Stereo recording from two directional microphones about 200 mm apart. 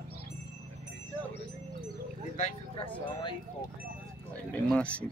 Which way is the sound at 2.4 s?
30° left (ahead or behind).